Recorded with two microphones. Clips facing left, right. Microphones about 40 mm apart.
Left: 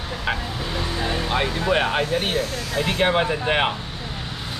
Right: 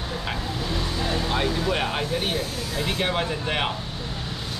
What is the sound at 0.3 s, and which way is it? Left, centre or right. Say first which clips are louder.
Vehicle: left 4 dB; left.